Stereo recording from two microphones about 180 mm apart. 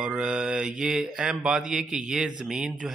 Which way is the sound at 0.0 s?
5° right (ahead or behind).